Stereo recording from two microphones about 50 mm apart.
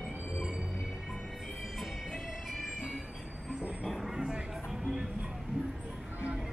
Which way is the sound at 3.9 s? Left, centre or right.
Centre.